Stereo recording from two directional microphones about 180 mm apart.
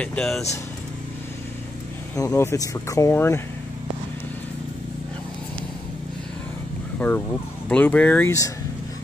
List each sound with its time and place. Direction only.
0.0 s speech: 5° left (ahead or behind)
2.1 s speech: 15° left (ahead or behind)
7.6 s speech: 10° left (ahead or behind)